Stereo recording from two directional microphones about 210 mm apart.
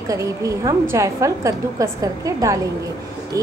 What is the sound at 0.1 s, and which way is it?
A woman's voice, 15° right (ahead or behind).